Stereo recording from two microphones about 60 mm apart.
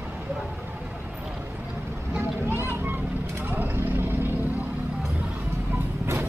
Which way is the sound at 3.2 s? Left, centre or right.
Right.